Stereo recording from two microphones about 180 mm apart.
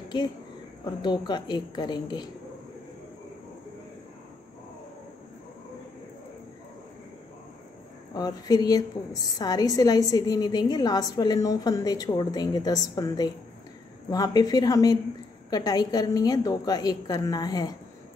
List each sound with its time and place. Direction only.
0.8 s a woman's voice: 25° left (ahead or behind)
8.1 s a woman's voice: 20° left (ahead or behind)